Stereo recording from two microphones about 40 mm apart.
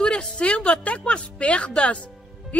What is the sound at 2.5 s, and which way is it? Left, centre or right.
Music, left.